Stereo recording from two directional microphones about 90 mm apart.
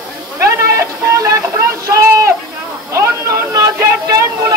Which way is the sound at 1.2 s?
35° right (ahead or behind).